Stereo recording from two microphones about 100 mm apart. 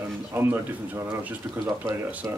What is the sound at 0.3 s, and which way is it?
Speech, 20° right (ahead or behind).